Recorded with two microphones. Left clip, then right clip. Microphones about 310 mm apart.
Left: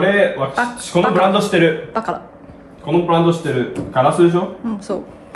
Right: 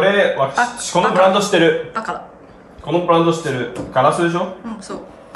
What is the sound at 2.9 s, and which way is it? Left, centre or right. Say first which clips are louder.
Speech: even; centre.